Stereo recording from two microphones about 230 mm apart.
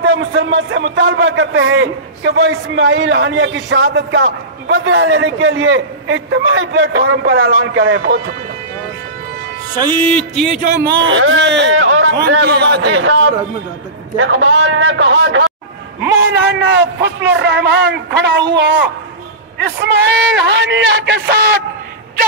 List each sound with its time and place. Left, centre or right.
0.0 s a man's voice: right
8.0 s speech: right
9.8 s music: left
10.9 s a man's voice: right
19.8 s a man's voice: right